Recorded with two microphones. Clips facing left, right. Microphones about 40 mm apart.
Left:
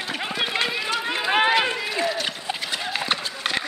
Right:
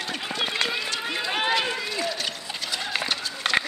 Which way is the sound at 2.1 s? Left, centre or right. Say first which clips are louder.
Left 3 dB; centre.